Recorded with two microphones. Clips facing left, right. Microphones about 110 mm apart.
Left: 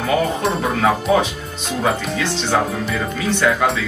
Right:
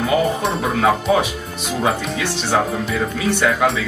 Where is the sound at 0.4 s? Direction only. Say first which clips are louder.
Even; centre (ahead or behind).